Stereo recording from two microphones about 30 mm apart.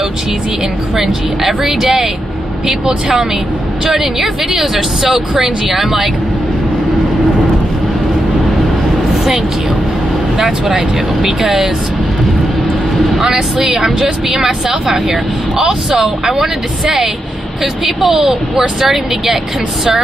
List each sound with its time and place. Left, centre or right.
0.9 s speech: centre
3.9 s speech: centre
11.2 s speech: centre
13.7 s speech: centre